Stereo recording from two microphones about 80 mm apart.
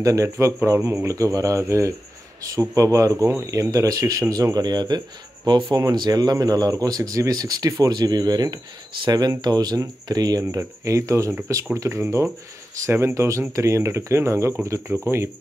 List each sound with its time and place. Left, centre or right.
0.0 s speech: right
10.4 s speech: right